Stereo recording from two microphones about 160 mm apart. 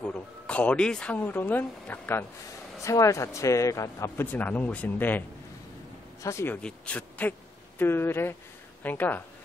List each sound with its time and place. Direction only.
0.0 s speech: 10° left (ahead or behind)
6.2 s speech: 15° left (ahead or behind)